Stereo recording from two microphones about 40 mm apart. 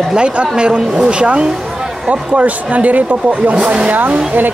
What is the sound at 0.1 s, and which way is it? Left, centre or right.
Speech, right.